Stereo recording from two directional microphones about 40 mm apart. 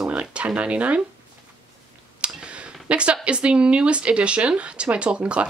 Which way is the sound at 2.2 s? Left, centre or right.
Right.